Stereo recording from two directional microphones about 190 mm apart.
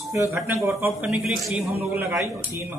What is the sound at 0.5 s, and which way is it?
A man's voice, 15° right (ahead or behind).